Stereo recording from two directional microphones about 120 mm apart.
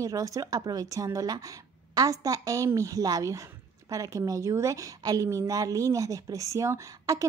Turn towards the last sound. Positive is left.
turn(degrees=-30)  # may be behind; listen again after turning